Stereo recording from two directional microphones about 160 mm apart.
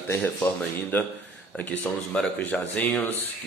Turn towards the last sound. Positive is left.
turn(degrees=10)  # may be behind; listen again after turning